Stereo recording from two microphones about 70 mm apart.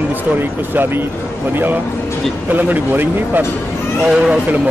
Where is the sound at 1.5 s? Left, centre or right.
Right.